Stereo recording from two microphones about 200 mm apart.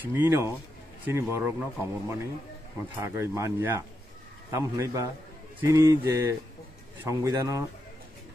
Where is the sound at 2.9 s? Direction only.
15° right (ahead or behind).